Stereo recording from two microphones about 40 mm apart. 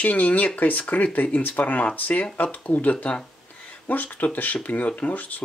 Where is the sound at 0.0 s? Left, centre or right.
Left.